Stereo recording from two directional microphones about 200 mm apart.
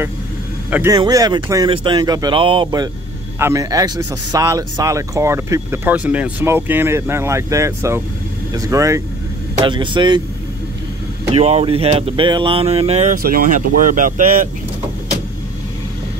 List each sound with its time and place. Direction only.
0.7 s a man's voice: 10° right (ahead or behind)
0.9 s speech: 20° right (ahead or behind)
11.3 s speech: 30° right (ahead or behind)
13.2 s speech: 45° right (ahead or behind)